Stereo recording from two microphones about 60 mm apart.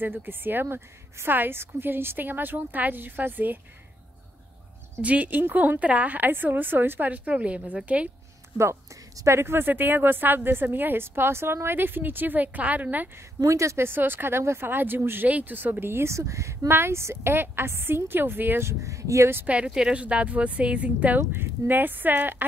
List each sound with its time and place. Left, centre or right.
0.0 s a woman's voice: right
5.0 s speech: right
9.1 s a woman's voice: right
13.4 s speech: right
13.8 s a woman's voice: right
16.6 s a woman's voice: right
18.7 s speech: right
19.4 s speech: centre
21.2 s a woman's voice: right